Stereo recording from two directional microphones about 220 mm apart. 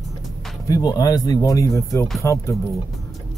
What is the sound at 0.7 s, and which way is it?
Speech, 15° left (ahead or behind).